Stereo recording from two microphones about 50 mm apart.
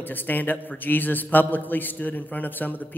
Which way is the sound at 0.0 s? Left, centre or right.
Left.